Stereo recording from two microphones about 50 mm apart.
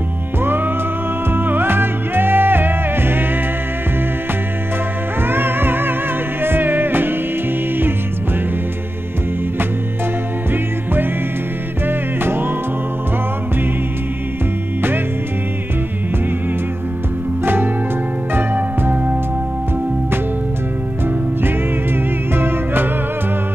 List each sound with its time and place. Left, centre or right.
1.3 s music: right
5.2 s music: right
12.2 s music: right
18.3 s music: right
22.3 s music: right